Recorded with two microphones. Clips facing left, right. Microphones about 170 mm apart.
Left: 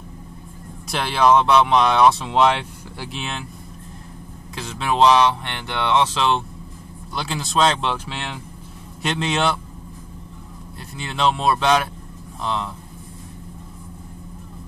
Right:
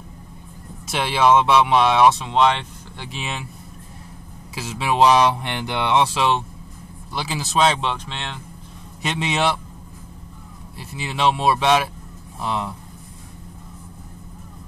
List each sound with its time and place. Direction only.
0.8 s speech: centre (ahead or behind)
4.6 s speech: 5° right (ahead or behind)
9.0 s speech: 5° right (ahead or behind)
10.8 s speech: 5° right (ahead or behind)